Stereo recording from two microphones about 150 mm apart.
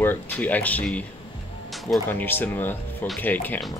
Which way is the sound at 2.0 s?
15° left (ahead or behind).